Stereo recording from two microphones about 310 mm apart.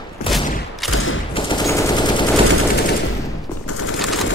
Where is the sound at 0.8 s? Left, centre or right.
Left.